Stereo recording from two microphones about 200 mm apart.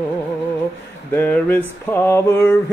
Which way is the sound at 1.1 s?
10° left (ahead or behind).